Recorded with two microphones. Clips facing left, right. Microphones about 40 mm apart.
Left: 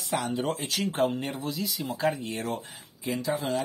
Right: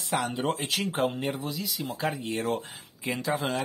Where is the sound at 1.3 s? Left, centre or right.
Centre.